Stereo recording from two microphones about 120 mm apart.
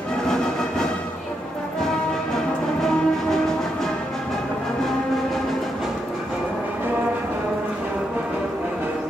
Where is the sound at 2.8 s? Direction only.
5° left (ahead or behind).